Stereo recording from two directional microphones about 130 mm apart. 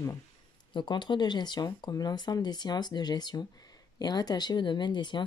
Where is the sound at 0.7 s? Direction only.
35° left (ahead or behind).